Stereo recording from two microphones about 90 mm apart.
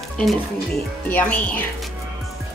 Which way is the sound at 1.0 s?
20° left (ahead or behind).